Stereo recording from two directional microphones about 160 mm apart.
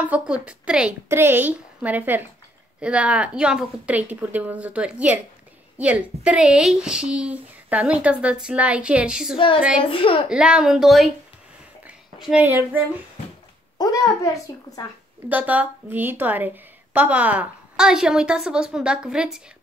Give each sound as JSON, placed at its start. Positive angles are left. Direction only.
{"t": 0.0, "sound": "a woman's voice", "side_deg": -10}
{"t": 9.8, "sound": "a woman's voice", "side_deg": 35}
{"t": 10.3, "sound": "a woman's voice", "side_deg": -5}
{"t": 11.8, "sound": "a sound", "side_deg": -5}
{"t": 12.4, "sound": "a woman's voice", "side_deg": -10}
{"t": 13.7, "sound": "a woman's voice", "side_deg": 20}
{"t": 15.2, "sound": "a woman's voice", "side_deg": -10}